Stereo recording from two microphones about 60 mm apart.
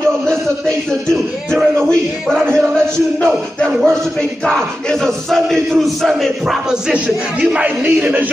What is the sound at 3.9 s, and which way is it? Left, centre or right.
Speech, centre.